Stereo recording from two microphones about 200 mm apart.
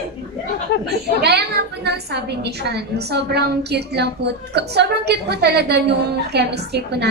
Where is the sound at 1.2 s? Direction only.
55° right (ahead or behind).